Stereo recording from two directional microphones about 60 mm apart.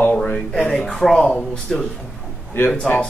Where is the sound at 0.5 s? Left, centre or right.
Centre.